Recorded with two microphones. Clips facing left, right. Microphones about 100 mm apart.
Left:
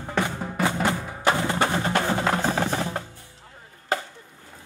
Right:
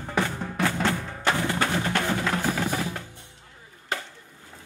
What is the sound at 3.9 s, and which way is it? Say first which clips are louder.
Chop: left 5 dB; 35° left (ahead or behind).